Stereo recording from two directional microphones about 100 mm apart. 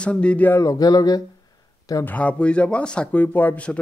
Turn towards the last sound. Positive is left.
turn(degrees=15)  # may be behind; listen again after turning